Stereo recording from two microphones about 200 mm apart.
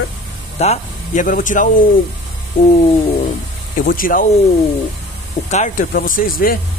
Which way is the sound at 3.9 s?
45° left (ahead or behind).